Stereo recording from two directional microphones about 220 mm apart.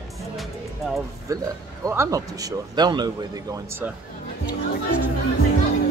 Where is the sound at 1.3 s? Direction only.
15° right (ahead or behind).